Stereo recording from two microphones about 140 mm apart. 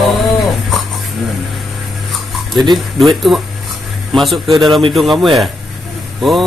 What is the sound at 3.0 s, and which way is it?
Speech, centre (ahead or behind).